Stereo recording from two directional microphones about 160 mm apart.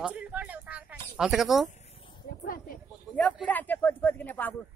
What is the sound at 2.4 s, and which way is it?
Speech, 60° left (ahead or behind).